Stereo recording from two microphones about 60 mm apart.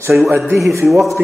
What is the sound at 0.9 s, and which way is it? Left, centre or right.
Speech, centre.